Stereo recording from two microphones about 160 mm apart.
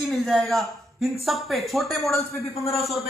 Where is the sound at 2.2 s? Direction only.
40° left (ahead or behind).